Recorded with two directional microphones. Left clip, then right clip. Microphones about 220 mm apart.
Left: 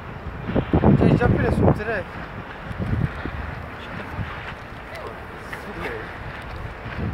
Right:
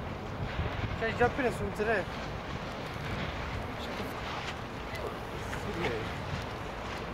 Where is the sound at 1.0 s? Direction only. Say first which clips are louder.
Left 8 dB; 40° left (ahead or behind).